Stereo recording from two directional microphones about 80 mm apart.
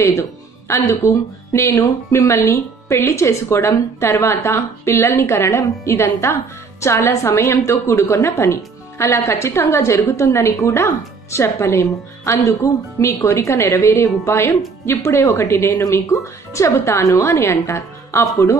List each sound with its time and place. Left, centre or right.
0.1 s speech: left